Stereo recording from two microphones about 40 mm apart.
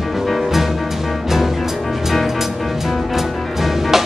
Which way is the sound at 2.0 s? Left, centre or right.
Centre.